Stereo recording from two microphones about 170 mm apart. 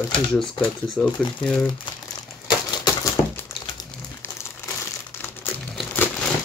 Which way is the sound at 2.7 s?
25° left (ahead or behind).